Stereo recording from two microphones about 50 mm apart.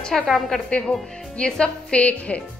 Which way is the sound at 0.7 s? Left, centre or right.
Left.